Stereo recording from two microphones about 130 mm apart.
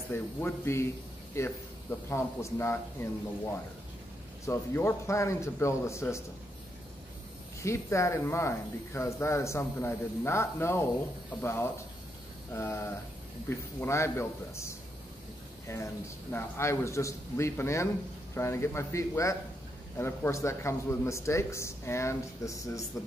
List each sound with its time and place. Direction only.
0.1 s speech: 20° left (ahead or behind)
4.5 s speech: 20° left (ahead or behind)
7.6 s speech: 20° left (ahead or behind)